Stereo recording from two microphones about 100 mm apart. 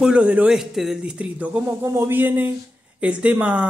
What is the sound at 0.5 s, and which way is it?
Speech, 5° right (ahead or behind).